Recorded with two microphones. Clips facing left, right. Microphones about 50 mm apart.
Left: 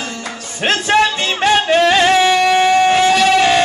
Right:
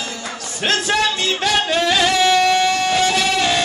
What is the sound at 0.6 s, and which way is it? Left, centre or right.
Music, left.